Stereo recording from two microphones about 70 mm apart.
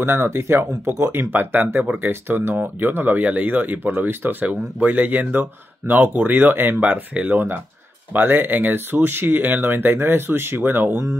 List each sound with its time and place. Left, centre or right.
0.0 s speech: right